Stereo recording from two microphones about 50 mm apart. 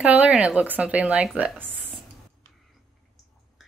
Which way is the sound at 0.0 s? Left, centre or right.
Right.